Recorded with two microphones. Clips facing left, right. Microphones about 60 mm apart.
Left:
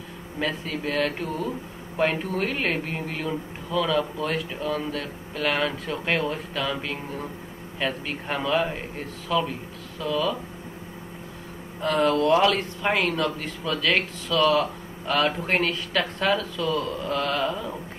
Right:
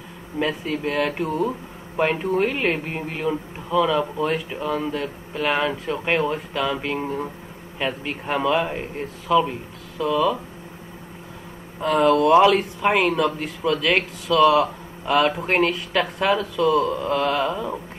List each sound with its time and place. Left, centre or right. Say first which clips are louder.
0.7 s speech: right 3 dB; centre
11.8 s speech: right 4 dB; centre